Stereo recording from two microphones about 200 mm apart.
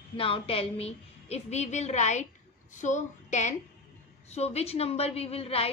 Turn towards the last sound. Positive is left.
turn(degrees=30)  # may be behind; listen again after turning